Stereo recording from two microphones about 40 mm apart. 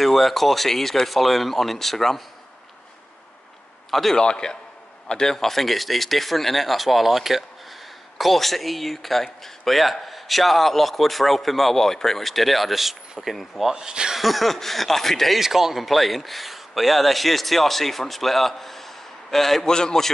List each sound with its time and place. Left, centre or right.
0.0 s speech: centre
3.9 s speech: centre
4.2 s a man's voice: left; by 13.7 s centre
13.7 s speech: centre
14.1 s speech: centre
15.3 s speech: centre
19.7 s a man's voice: centre